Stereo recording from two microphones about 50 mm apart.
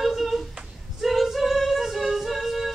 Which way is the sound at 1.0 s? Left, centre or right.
Centre.